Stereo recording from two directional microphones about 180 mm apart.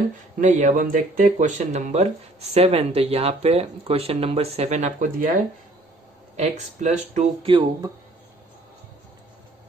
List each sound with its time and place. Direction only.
0.4 s speech: 45° right (ahead or behind)
7.4 s speech: 25° right (ahead or behind)